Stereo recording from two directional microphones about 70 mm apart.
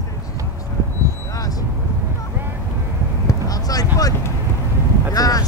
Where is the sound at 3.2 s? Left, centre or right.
Left.